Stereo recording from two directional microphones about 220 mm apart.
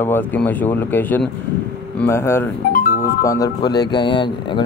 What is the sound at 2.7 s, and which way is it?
Music, 40° left (ahead or behind).